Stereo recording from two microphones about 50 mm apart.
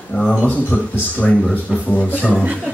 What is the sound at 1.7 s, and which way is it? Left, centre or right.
Speech, centre.